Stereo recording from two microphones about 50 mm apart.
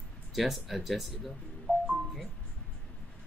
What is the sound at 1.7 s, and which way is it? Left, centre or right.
Music, left.